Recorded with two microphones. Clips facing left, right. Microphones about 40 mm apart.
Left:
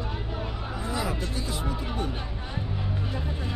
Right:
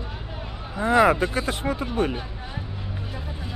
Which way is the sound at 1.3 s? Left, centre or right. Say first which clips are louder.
Right 6 dB; right.